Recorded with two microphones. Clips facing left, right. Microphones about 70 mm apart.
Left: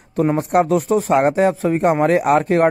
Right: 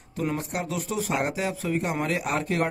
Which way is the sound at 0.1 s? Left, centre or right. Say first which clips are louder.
Left 12 dB; left.